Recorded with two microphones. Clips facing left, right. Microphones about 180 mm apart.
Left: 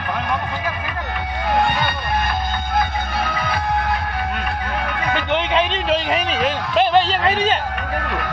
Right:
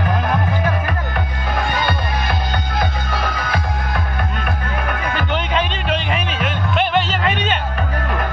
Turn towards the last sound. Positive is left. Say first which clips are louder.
# left 2 dB
turn(degrees=35)  # may be behind; listen again after turning